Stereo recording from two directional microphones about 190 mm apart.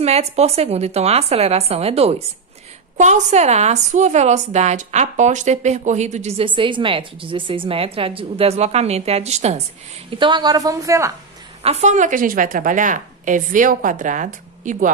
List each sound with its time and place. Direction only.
0.0 s a woman's voice: 35° right (ahead or behind); by 11.1 s 15° right (ahead or behind)
11.6 s a woman's voice: 35° right (ahead or behind)